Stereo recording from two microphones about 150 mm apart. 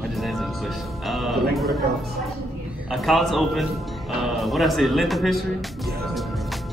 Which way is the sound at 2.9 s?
Centre (ahead or behind).